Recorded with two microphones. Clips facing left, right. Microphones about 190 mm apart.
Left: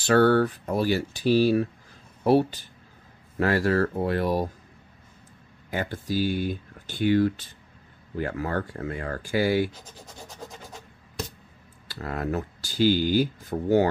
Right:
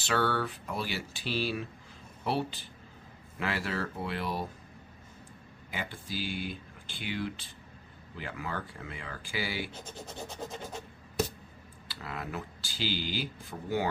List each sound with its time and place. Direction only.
0.0 s speech: 45° left (ahead or behind)
5.7 s speech: 45° left (ahead or behind)
11.9 s speech: 45° left (ahead or behind)